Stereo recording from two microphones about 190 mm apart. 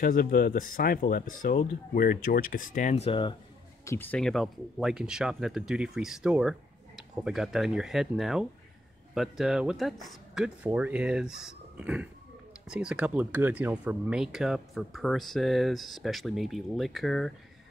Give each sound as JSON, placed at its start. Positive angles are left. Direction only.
{"t": 0.0, "sound": "speech", "side_deg": 50}
{"t": 3.8, "sound": "speech", "side_deg": 10}